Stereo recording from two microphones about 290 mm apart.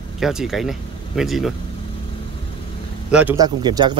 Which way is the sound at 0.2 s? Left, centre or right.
Centre.